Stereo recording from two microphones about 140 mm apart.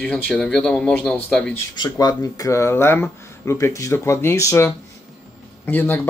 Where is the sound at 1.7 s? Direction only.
30° left (ahead or behind).